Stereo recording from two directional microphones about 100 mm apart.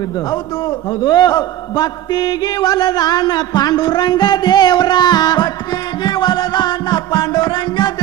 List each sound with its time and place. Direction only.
0.3 s a man's voice: 35° left (ahead or behind)